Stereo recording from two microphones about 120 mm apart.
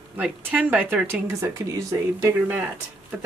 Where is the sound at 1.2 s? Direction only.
25° right (ahead or behind).